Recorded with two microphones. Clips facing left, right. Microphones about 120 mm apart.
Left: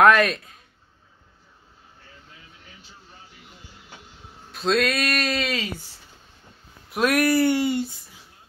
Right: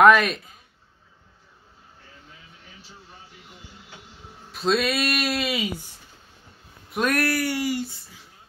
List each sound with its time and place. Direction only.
0.0 s speech: centre (ahead or behind)
4.5 s speech: centre (ahead or behind)
6.9 s speech: centre (ahead or behind)
7.2 s speech: 20° left (ahead or behind)